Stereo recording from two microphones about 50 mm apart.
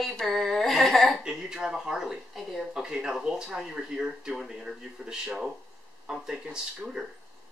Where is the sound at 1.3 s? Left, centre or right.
Centre.